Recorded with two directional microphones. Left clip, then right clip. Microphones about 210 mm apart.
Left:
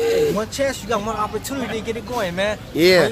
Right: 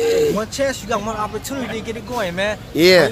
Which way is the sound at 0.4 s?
15° right (ahead or behind).